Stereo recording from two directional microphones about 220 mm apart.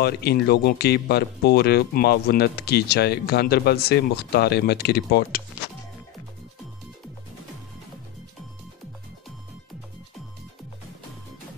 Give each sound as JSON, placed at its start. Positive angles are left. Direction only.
{"t": 0.0, "sound": "speech", "side_deg": 45}